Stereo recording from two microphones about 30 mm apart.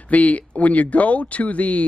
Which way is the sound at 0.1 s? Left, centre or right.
Left.